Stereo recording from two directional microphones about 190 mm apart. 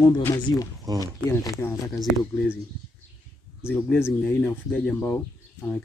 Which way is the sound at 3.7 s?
10° left (ahead or behind).